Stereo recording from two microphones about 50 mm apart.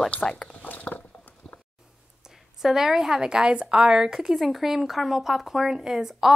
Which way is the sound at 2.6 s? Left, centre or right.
Centre.